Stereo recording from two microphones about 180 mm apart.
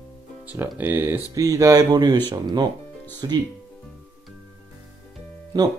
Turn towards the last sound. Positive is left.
turn(degrees=-20)  # may be behind; listen again after turning